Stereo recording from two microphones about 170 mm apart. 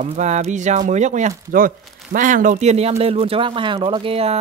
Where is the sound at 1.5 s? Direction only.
55° right (ahead or behind); by 4.3 s 35° right (ahead or behind).